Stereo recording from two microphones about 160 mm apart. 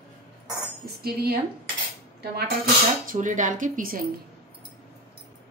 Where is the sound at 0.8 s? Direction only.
75° right (ahead or behind).